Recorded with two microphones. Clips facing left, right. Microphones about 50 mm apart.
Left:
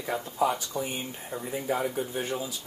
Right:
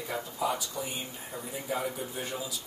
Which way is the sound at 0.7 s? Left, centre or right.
Left.